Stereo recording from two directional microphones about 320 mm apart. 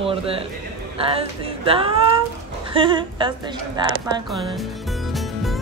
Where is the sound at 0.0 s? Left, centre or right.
Centre.